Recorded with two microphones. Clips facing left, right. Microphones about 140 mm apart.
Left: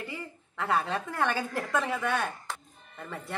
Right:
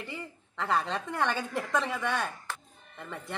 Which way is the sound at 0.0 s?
Centre (ahead or behind).